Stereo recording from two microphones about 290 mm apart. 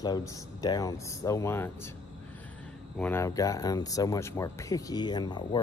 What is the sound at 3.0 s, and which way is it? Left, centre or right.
Speech, centre.